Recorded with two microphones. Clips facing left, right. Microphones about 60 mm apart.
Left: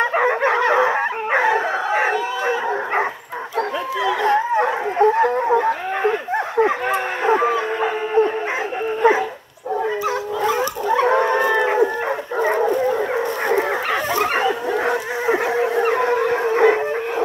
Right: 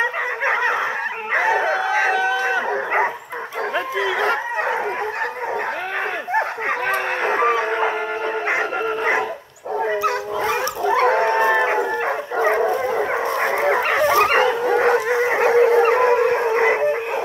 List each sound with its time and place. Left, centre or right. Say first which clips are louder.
0.4 s dog: left 3 dB; right
0.7 s dog: left 5 dB; centre
6.6 s a sound: left 3 dB; right
11.0 s howl: even; right
11.3 s a sound: even; right
13.7 s dog: right 4 dB; right
14.8 s howl: right 4 dB; right
16.3 s howl: even; centre